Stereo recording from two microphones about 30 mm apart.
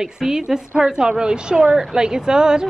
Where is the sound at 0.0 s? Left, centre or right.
Centre.